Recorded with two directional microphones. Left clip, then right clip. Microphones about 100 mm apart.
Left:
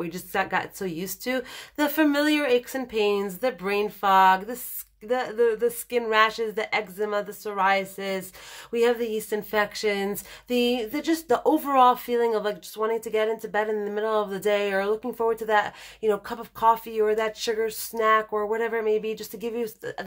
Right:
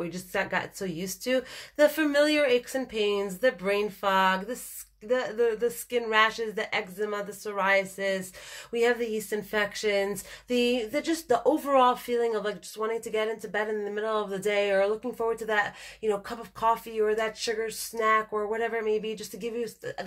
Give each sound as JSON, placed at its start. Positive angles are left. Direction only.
{"t": 0.0, "sound": "a woman's voice", "side_deg": 40}
{"t": 18.3, "sound": "speech", "side_deg": 20}
{"t": 18.6, "sound": "a woman's voice", "side_deg": 45}